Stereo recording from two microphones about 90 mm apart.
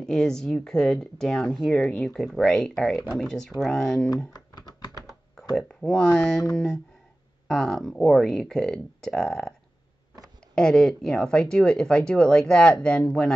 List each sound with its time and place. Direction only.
0.0 s speech: 5° left (ahead or behind)
4.3 s typing: 50° left (ahead or behind)
5.8 s speech: 5° left (ahead or behind)
10.5 s speech: 5° left (ahead or behind)